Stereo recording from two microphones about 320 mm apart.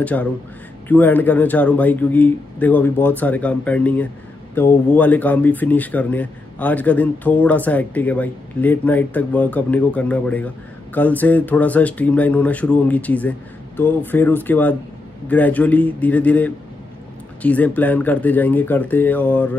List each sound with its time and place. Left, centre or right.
0.0 s speech: centre